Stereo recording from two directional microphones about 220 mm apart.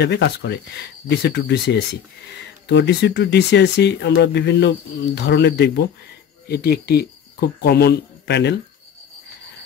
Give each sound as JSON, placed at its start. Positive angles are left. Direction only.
{"t": 0.0, "sound": "speech", "side_deg": 50}